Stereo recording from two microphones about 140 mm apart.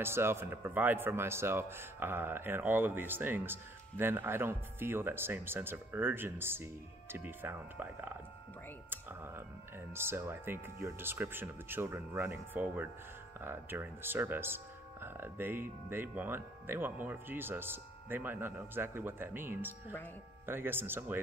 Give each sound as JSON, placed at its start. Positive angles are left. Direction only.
{"t": 0.0, "sound": "speech", "side_deg": -15}
{"t": 9.9, "sound": "speech", "side_deg": -15}